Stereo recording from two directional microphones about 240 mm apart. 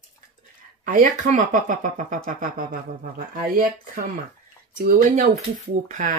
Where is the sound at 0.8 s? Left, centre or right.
Right.